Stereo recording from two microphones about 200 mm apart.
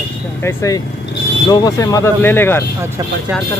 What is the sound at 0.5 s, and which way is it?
Speech, 15° left (ahead or behind).